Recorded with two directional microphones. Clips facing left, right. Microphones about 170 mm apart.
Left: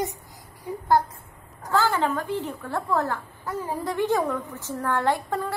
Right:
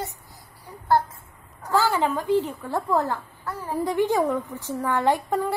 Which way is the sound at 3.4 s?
15° left (ahead or behind).